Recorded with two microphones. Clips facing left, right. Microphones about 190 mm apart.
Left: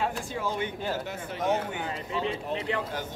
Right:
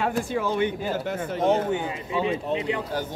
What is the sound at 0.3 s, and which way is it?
Speech, 65° right (ahead or behind).